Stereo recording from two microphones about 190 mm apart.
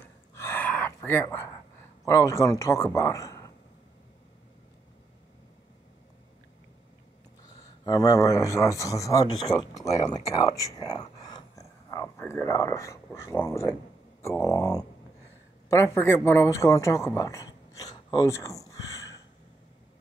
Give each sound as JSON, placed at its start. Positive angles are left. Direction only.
{"t": 0.3, "sound": "gasp", "side_deg": 15}
{"t": 2.0, "sound": "a man's voice", "side_deg": 15}
{"t": 7.8, "sound": "a man's voice", "side_deg": 20}